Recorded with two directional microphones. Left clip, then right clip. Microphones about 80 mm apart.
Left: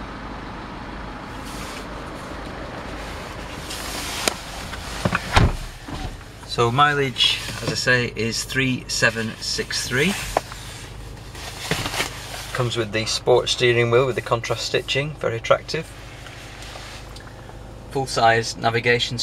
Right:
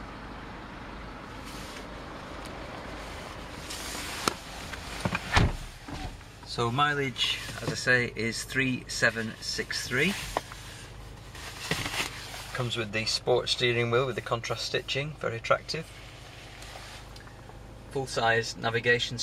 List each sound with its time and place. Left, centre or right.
5.0 s vehicle: right
6.5 s speech: centre
12.5 s speech: centre
17.9 s speech: centre